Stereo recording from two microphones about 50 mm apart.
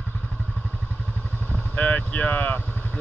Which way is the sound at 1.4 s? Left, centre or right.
Left.